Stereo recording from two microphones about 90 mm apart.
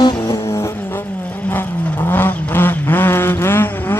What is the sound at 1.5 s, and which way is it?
Vehicle, 20° left (ahead or behind).